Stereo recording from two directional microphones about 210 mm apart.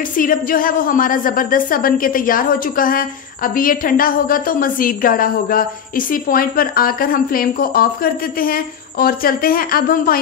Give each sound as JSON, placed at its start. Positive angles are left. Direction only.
{"t": 0.2, "sound": "a woman's voice", "side_deg": 40}